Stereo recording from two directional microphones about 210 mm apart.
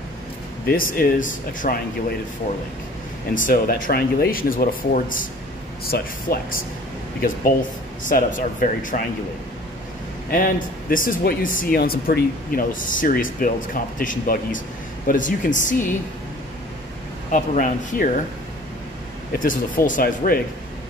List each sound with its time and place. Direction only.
0.7 s speech: 45° left (ahead or behind)
3.4 s speech: 40° left (ahead or behind)
10.3 s speech: 40° left (ahead or behind)
17.3 s speech: 40° left (ahead or behind)
19.4 s speech: 40° left (ahead or behind)